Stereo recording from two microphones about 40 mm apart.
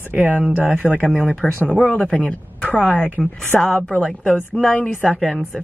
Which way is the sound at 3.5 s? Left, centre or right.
Centre.